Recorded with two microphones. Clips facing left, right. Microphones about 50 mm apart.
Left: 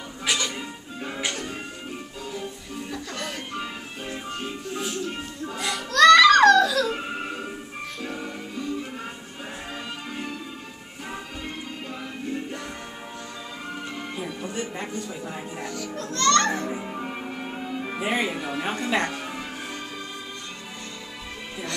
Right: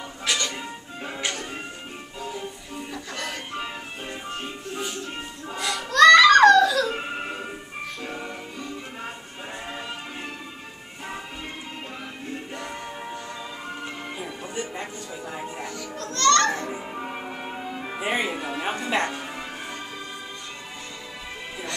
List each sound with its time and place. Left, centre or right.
0.2 s music: centre
0.6 s music: centre
5.6 s children playing: centre
5.9 s music: centre
12.3 s music: centre
13.8 s music: centre
16.0 s music: centre
16.6 s music: centre